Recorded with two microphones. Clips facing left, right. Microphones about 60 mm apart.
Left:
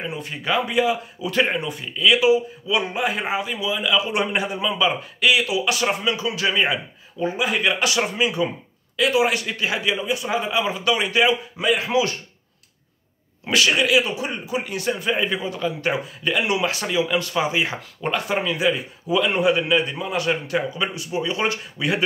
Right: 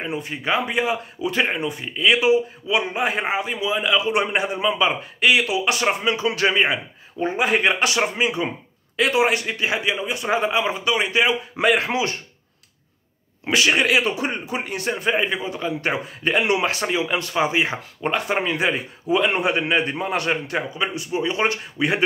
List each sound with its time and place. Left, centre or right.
0.0 s a man's voice: right
1.3 s a man's voice: centre
7.2 s a man's voice: right
10.1 s a man's voice: right
11.5 s speech: right
13.5 s a man's voice: right
13.7 s speech: right
20.2 s a man's voice: right